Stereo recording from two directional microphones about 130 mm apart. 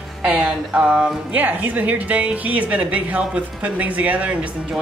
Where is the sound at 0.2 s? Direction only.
5° right (ahead or behind).